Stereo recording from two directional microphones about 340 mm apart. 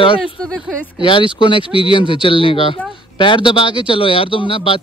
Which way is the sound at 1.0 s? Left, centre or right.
Centre.